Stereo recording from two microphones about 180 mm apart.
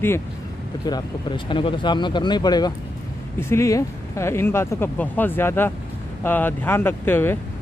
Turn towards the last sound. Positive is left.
turn(degrees=10)  # may be behind; listen again after turning